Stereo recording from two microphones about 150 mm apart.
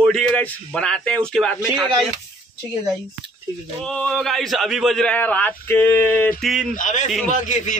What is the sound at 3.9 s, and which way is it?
A man's voice, 5° left (ahead or behind).